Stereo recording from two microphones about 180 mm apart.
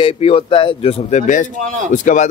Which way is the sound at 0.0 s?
30° left (ahead or behind).